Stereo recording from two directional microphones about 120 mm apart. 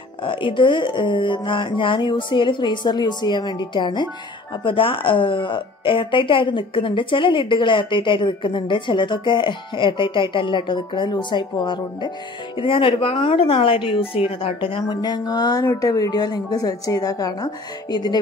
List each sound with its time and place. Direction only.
0.2 s a woman's voice: 45° left (ahead or behind)